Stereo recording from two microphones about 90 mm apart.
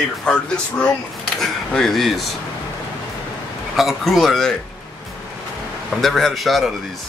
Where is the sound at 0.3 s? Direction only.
10° left (ahead or behind).